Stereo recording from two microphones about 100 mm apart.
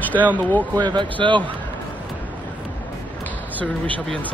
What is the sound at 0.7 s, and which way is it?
Speech, 50° right (ahead or behind).